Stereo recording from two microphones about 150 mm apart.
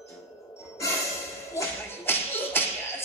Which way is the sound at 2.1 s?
15° left (ahead or behind).